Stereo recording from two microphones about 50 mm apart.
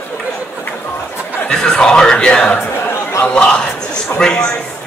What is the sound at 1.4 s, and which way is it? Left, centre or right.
Speech, centre.